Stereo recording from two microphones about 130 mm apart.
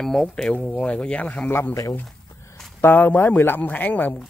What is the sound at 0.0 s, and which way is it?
Speech, centre (ahead or behind).